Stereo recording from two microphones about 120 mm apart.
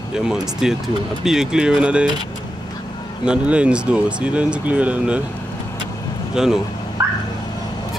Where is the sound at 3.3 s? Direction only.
10° right (ahead or behind).